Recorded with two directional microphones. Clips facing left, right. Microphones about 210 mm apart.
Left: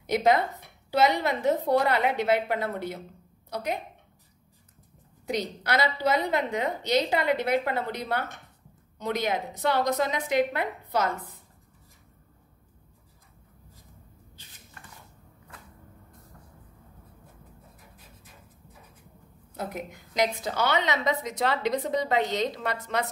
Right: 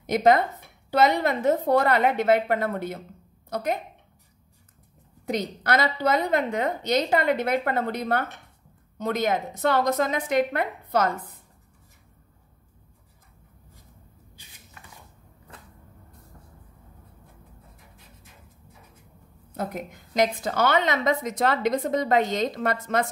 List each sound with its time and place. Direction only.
0.0 s a woman's voice: 50° right (ahead or behind)
5.2 s a woman's voice: 50° right (ahead or behind)
14.3 s rodents: 15° right (ahead or behind)
19.5 s a woman's voice: 50° right (ahead or behind)